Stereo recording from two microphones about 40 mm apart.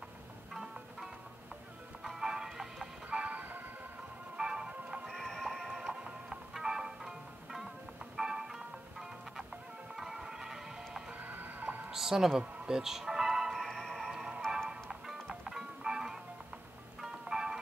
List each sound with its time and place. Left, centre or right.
2.0 s music: centre
3.1 s music: right
4.4 s music: centre
5.0 s music: centre
6.5 s music: centre
9.9 s music: centre
11.1 s music: right
11.9 s speech: centre
12.6 s music: centre
13.5 s music: centre
15.0 s music: centre